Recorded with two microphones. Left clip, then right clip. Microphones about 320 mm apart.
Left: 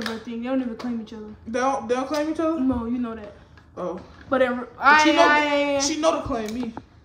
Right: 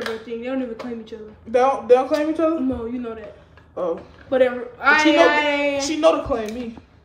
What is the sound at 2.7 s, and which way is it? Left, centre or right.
Speech, centre.